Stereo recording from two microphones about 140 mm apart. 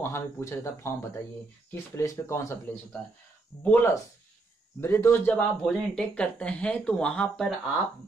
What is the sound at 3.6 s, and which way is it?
Speech, 15° left (ahead or behind).